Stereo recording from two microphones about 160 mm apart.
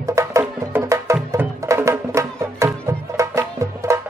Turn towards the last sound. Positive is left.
turn(degrees=-20)  # may be behind; listen again after turning